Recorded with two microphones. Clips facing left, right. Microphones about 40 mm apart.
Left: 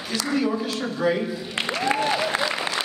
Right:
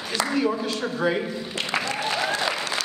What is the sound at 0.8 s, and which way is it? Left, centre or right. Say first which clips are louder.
A man's voice: left 2 dB; centre.